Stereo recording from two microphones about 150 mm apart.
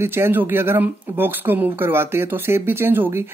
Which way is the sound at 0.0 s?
15° right (ahead or behind).